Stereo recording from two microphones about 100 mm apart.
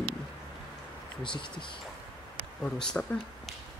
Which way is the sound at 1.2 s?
55° left (ahead or behind).